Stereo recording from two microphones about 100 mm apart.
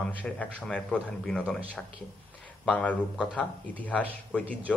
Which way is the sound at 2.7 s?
15° left (ahead or behind).